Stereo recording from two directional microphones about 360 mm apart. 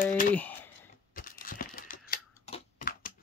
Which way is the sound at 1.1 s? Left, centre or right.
Left.